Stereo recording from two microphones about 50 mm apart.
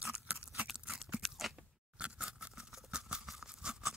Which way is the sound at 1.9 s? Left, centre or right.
Right.